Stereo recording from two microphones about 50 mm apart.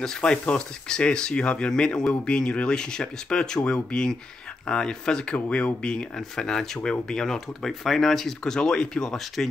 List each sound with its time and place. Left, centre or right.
0.0 s speech: centre